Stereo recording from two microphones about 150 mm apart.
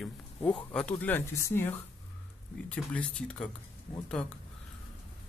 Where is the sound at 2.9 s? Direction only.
5° left (ahead or behind).